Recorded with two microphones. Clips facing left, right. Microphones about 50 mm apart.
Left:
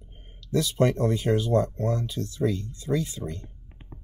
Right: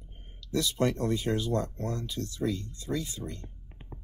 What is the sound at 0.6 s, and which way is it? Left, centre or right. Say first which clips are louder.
Speech: left 5 dB; left.